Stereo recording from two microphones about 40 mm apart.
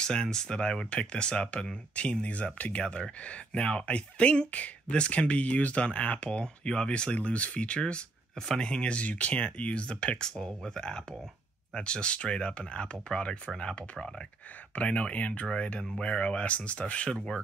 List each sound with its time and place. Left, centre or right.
0.0 s speech: centre
8.8 s speech: left
14.8 s speech: left